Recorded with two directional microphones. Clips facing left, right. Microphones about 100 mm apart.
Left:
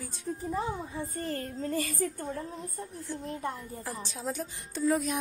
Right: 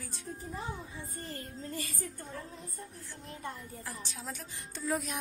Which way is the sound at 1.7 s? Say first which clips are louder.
Left 10 dB; 40° left (ahead or behind).